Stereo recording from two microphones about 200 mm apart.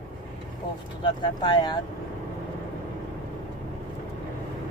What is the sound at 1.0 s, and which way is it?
Speech, 20° left (ahead or behind).